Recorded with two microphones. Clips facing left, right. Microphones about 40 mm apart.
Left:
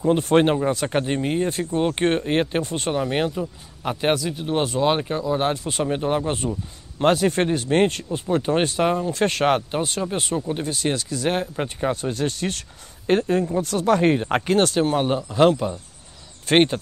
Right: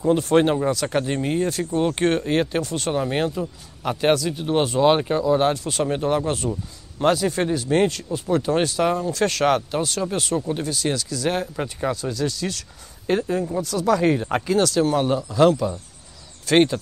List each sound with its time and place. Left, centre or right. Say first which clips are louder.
0.1 s speech: even; left
3.4 s speech: even; centre
4.3 s speech: right 2 dB; centre
5.2 s speech: right 4 dB; centre
5.5 s speech: right 1 dB; centre
7.0 s speech: left 1 dB; left
8.3 s speech: even; left
14.4 s speech: left 1 dB; left
14.7 s speech: right 1 dB; left